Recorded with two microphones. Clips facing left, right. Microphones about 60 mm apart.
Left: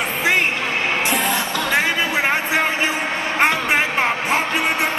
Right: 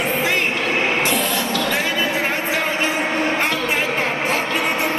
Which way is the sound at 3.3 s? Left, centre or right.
Left.